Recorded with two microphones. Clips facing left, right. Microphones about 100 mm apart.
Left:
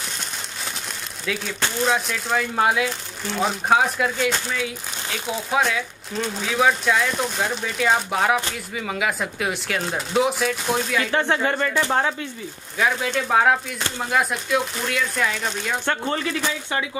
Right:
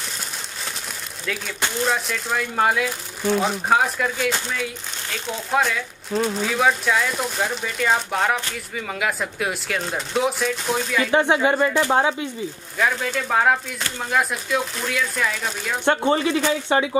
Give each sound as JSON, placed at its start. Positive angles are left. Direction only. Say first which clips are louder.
{"t": 1.8, "sound": "speech", "louder": "left 1 dB", "side_deg": 0}
{"t": 11.1, "sound": "speech", "louder": "right 6 dB", "side_deg": -15}
{"t": 12.7, "sound": "speech", "louder": "left 1 dB", "side_deg": 0}
{"t": 15.8, "sound": "speech", "louder": "right 9 dB", "side_deg": -20}